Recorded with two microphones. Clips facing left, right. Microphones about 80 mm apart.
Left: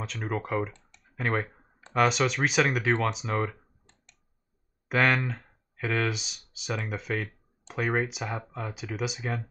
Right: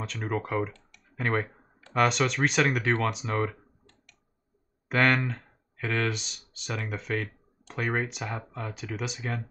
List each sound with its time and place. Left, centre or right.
0.0 s speech: centre
3.8 s a sound: left
4.8 s speech: centre